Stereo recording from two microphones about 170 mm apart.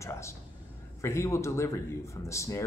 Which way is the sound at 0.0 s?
15° left (ahead or behind).